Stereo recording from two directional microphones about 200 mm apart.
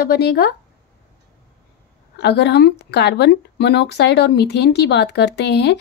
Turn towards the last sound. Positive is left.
turn(degrees=55)  # may be behind; listen again after turning